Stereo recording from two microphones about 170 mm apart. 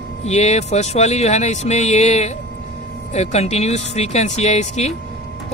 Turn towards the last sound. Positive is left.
turn(degrees=40)  # may be behind; listen again after turning